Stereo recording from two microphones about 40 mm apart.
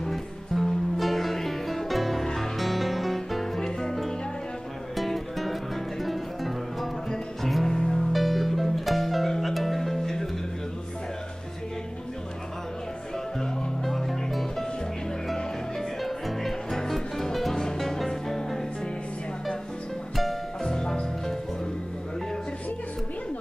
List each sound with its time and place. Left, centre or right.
0.0 s music: centre
7.7 s music: centre
8.1 s music: centre
13.4 s music: centre
16.0 s music: centre
20.6 s music: centre